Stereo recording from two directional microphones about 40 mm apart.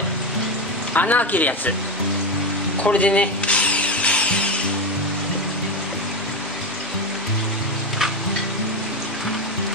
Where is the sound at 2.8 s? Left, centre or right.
Left.